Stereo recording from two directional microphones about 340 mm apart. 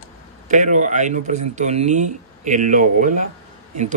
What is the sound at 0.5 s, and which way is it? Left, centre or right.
Speech, right.